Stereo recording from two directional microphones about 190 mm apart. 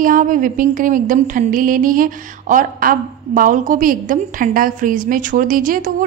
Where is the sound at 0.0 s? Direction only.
45° right (ahead or behind).